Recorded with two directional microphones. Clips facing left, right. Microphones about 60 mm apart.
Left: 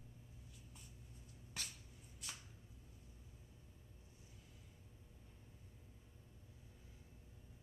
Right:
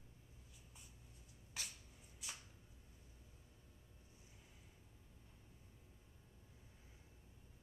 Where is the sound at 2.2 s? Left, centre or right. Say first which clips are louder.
Even; centre.